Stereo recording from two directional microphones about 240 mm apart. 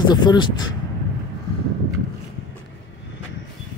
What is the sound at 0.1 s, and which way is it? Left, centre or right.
Speech, centre.